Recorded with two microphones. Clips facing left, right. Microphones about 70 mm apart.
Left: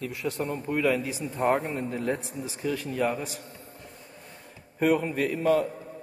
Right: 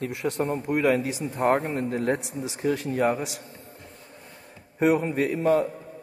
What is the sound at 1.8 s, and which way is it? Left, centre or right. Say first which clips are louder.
A man's voice: right 4 dB; right.